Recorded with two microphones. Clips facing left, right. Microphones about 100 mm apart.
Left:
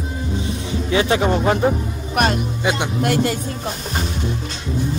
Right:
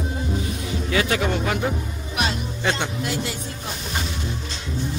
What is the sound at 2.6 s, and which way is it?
Speech, 15° left (ahead or behind).